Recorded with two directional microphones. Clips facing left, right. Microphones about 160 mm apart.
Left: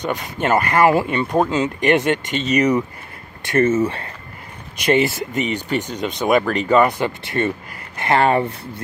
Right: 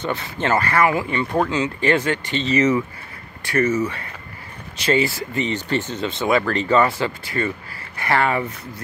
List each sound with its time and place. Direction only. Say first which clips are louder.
0.0 s speech: left 2 dB; 15° left (ahead or behind)
3.4 s speech: left 3 dB; 25° left (ahead or behind)
4.7 s speech: left 3 dB; 20° left (ahead or behind)